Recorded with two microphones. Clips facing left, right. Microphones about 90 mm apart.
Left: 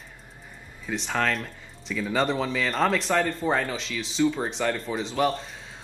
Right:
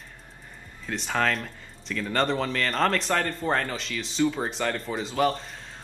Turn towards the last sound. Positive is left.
turn(degrees=0)  # may be behind; listen again after turning